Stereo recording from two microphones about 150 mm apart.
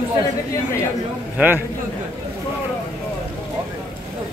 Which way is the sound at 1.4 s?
15° right (ahead or behind).